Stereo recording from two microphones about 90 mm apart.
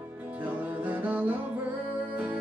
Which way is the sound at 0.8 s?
15° right (ahead or behind).